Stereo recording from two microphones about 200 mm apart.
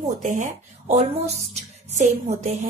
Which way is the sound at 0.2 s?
40° right (ahead or behind).